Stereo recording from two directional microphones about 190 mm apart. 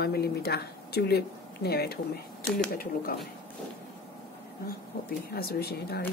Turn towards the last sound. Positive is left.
turn(degrees=55)  # may be behind; listen again after turning